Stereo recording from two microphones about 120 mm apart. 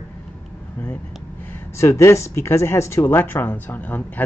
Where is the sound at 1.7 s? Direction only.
25° left (ahead or behind).